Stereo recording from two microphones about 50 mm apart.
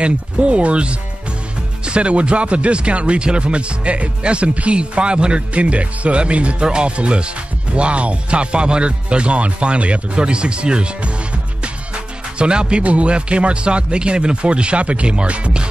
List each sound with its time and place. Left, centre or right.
0.0 s speech: right